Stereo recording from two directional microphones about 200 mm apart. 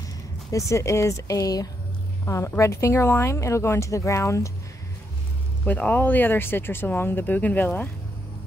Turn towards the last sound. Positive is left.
turn(degrees=10)  # may be behind; listen again after turning